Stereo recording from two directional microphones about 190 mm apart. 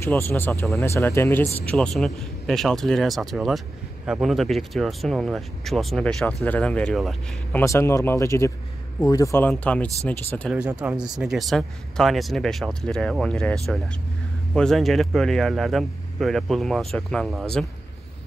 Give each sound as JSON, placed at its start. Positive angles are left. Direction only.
{"t": 0.0, "sound": "speech", "side_deg": 10}
{"t": 7.6, "sound": "speech", "side_deg": 15}
{"t": 10.5, "sound": "speech", "side_deg": -5}